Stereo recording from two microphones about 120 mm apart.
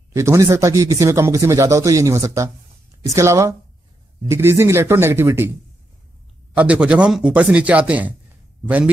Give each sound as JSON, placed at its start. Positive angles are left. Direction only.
{"t": 0.1, "sound": "speech", "side_deg": -25}
{"t": 6.5, "sound": "a man's voice", "side_deg": -10}